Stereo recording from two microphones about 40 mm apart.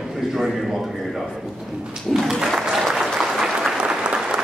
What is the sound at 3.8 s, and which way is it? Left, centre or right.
Applause, right.